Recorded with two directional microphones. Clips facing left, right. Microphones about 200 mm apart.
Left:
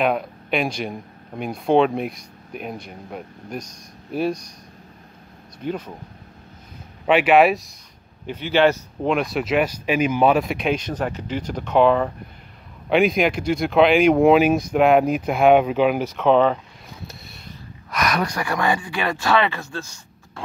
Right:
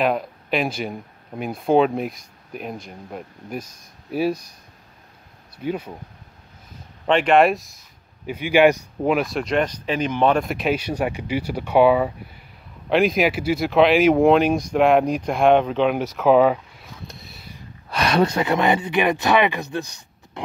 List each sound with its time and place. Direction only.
0.0 s speech: centre (ahead or behind)
5.6 s speech: 10° right (ahead or behind)
7.1 s speech: 5° left (ahead or behind)
8.3 s speech: 10° right (ahead or behind)
9.1 s speech: centre (ahead or behind)
17.1 s a sound: centre (ahead or behind)
17.8 s speech: 30° right (ahead or behind)